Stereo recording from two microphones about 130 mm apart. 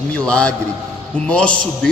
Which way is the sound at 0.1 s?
10° left (ahead or behind).